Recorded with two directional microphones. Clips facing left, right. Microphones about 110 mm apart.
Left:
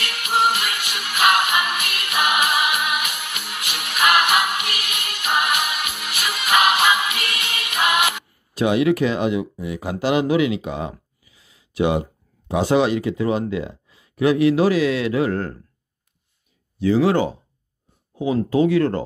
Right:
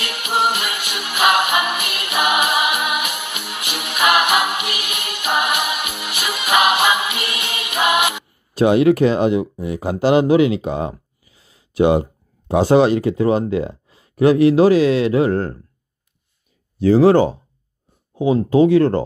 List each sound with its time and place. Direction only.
0.0 s music: 15° right (ahead or behind)
8.5 s speech: 40° right (ahead or behind)
16.7 s speech: 40° right (ahead or behind)